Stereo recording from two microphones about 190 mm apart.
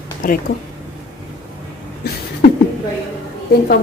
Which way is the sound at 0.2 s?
45° left (ahead or behind).